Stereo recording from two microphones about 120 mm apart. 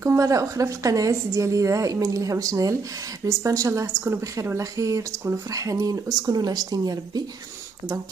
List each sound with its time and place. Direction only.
0.0 s speech: 25° right (ahead or behind)